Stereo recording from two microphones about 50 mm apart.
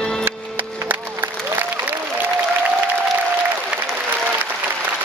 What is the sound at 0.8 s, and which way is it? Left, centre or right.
Music, right.